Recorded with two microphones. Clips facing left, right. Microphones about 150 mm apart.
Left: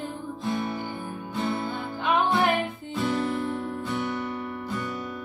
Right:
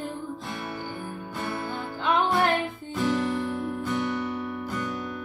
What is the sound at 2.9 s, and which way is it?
Music, centre (ahead or behind).